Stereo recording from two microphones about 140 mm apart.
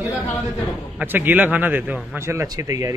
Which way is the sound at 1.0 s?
15° right (ahead or behind).